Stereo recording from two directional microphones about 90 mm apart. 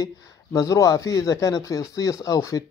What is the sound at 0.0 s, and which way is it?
Speech, 40° left (ahead or behind).